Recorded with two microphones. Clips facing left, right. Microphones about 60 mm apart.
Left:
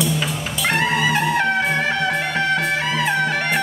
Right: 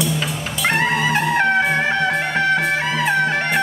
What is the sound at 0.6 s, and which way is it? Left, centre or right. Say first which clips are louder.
Music: right 1 dB; right.